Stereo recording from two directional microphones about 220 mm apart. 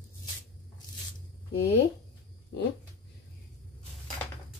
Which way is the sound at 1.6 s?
50° left (ahead or behind).